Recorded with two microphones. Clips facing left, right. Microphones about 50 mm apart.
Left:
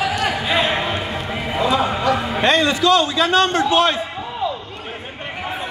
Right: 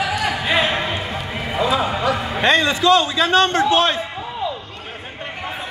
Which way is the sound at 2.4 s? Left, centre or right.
Centre.